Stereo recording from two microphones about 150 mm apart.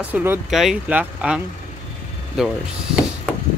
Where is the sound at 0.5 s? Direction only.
Centre (ahead or behind).